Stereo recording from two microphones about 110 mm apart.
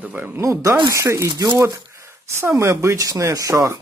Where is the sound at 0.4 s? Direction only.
25° right (ahead or behind).